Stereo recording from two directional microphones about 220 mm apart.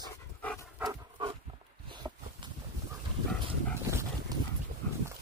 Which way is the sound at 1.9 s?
20° right (ahead or behind).